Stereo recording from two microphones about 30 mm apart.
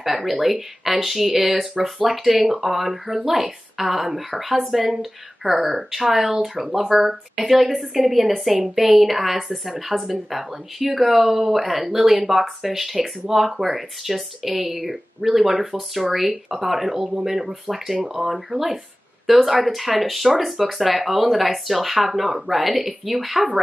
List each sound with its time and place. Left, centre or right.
0.0 s a woman's voice: centre
8.3 s speech: centre
23.4 s speech: right